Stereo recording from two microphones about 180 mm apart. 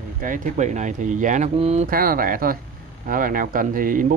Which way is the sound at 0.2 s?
45° right (ahead or behind).